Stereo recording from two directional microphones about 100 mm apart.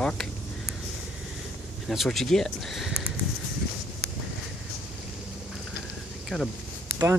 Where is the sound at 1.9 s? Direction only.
Centre (ahead or behind).